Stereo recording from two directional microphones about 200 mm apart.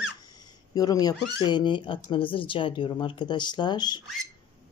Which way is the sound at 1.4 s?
20° left (ahead or behind).